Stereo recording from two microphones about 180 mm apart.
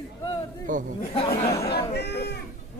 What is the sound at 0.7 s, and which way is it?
Chatter, 45° right (ahead or behind).